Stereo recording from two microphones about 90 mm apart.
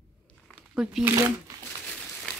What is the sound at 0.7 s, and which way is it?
Speech, 5° right (ahead or behind).